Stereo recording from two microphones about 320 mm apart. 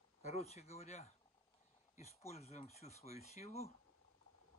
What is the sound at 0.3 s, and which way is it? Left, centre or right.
Speech, centre.